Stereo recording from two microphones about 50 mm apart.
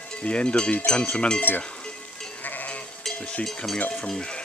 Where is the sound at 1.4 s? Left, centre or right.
Left.